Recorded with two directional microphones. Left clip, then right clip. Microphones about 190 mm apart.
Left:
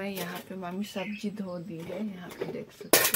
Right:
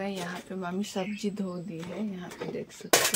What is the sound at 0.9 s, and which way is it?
Speech, 35° right (ahead or behind).